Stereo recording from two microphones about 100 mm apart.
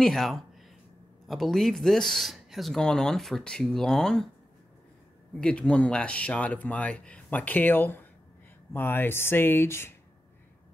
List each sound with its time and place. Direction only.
0.0 s speech: centre (ahead or behind)
5.4 s speech: 10° left (ahead or behind)